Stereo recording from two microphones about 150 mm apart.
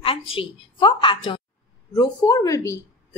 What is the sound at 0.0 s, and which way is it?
A woman's voice, 35° left (ahead or behind).